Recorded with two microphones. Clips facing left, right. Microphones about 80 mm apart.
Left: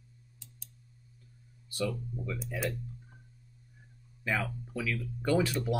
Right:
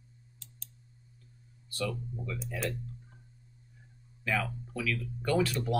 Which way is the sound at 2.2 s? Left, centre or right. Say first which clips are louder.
Left 1 dB; centre.